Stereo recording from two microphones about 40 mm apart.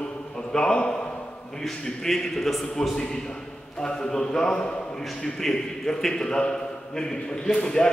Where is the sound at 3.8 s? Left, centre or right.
Centre.